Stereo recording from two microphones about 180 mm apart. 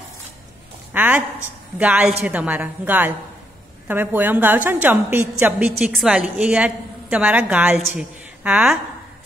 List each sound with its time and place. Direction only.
0.9 s a woman's voice: 10° right (ahead or behind)